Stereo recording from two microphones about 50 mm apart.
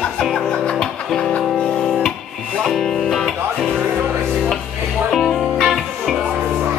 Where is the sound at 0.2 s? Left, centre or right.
Centre.